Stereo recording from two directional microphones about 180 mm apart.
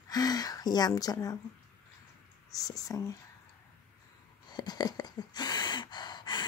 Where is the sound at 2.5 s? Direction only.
20° left (ahead or behind).